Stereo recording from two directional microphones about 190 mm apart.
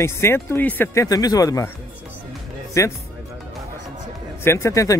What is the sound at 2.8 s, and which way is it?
Speech, 15° left (ahead or behind).